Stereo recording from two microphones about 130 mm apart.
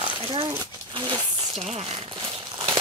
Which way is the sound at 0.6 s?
35° right (ahead or behind).